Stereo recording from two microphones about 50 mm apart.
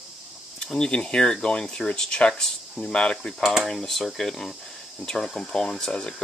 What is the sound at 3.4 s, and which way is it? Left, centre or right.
Speech, centre.